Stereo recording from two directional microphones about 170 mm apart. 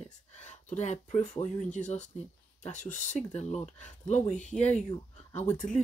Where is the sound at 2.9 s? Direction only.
45° left (ahead or behind).